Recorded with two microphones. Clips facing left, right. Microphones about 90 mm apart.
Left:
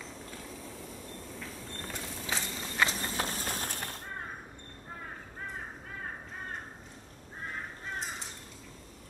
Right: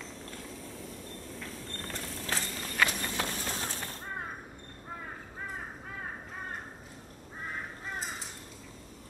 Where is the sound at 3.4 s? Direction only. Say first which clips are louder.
Even; 55° left (ahead or behind).